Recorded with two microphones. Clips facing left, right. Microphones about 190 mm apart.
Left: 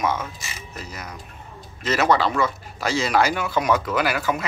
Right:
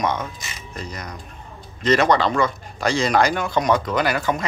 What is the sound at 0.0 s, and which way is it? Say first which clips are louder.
Speech: right 1 dB; 5° left (ahead or behind).